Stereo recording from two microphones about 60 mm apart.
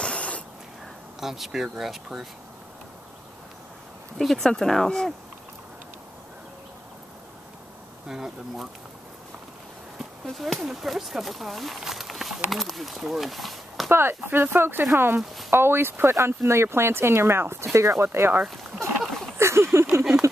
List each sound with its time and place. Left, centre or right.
0.0 s a sound: centre
1.2 s speech: centre
4.2 s speech: centre
8.1 s speech: centre
10.3 s speech: centre
13.8 s speech: right
17.7 s speech: right
18.0 s speech: right
19.3 s a sound: right